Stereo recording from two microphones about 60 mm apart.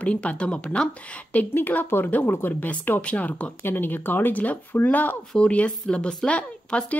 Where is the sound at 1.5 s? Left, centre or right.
Left.